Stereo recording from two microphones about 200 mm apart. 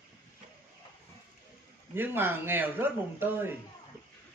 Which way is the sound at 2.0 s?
10° right (ahead or behind).